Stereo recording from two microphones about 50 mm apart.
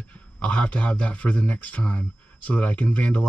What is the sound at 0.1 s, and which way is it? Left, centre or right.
Speech, left.